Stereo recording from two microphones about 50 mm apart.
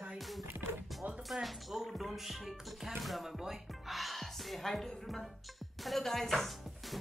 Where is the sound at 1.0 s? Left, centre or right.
Right.